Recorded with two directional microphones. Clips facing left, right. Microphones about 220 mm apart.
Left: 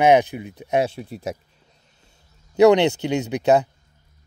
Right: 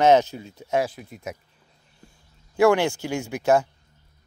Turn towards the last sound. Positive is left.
turn(degrees=20)  # may be behind; listen again after turning